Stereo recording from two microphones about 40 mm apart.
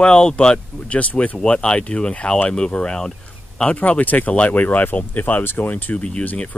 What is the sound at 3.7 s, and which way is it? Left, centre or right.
Speech, left.